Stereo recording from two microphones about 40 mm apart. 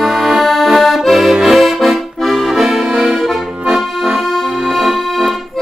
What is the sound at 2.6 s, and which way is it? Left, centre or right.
Accordion, centre.